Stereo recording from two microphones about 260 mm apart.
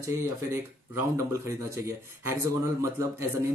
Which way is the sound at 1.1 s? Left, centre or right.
Centre.